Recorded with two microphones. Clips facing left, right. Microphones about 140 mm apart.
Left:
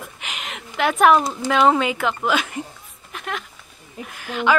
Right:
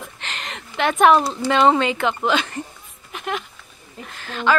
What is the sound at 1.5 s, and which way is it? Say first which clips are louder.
A woman's voice: right 1 dB; 5° left (ahead or behind).